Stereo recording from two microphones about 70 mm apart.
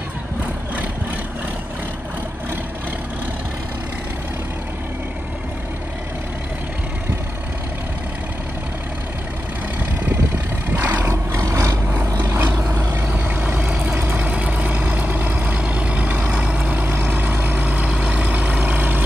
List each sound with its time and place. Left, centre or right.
10.7 s vehicle: right
11.1 s vehicle: right
11.9 s vehicle: right